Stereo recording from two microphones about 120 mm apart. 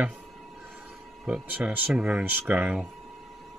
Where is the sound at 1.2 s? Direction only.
5° right (ahead or behind).